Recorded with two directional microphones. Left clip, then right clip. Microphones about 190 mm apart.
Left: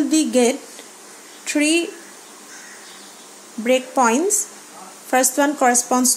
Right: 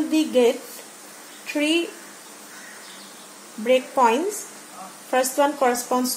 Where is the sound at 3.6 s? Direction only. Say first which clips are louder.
Left 1 dB; 35° left (ahead or behind).